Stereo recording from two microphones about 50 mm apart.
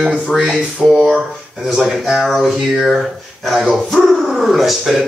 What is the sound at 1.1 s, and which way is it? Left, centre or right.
Speech, centre.